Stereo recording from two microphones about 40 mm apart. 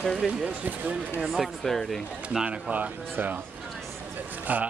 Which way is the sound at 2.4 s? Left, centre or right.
Right.